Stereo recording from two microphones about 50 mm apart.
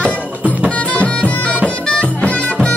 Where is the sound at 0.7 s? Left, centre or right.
Left.